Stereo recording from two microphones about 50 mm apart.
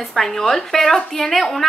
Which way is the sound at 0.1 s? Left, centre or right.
Centre.